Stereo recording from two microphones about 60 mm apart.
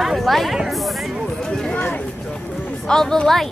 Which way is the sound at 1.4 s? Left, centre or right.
Centre.